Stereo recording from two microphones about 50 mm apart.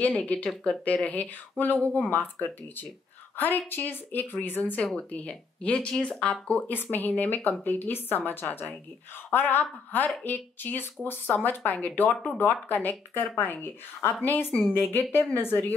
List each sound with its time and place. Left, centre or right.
0.0 s speech: left
4.9 s speech: left
6.7 s speech: left